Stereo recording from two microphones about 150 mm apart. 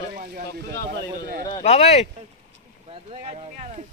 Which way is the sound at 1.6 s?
45° left (ahead or behind).